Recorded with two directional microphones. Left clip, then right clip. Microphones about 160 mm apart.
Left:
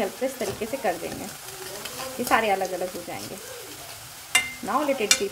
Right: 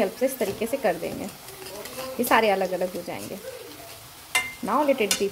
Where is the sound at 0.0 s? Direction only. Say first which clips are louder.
Right 3 dB; 15° right (ahead or behind).